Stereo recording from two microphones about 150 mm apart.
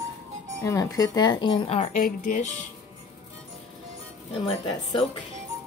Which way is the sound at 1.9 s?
60° left (ahead or behind).